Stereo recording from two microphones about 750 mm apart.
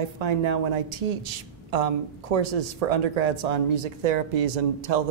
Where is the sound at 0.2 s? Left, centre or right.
Right.